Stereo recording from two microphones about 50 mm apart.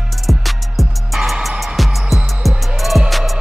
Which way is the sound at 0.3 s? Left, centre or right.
Centre.